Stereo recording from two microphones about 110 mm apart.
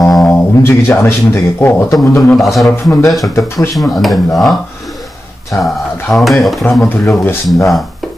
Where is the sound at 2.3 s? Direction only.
Centre (ahead or behind).